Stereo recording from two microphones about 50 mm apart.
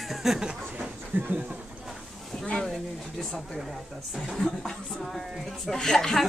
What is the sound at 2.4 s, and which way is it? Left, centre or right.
Speech, centre.